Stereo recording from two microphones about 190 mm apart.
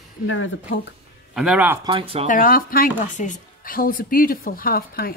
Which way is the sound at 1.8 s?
30° right (ahead or behind).